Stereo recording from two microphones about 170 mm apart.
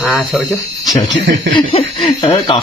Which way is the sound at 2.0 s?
25° left (ahead or behind).